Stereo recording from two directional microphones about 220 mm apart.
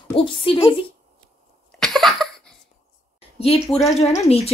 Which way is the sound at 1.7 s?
Centre (ahead or behind).